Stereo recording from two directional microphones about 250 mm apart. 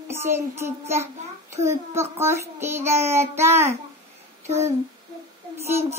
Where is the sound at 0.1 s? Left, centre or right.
Centre.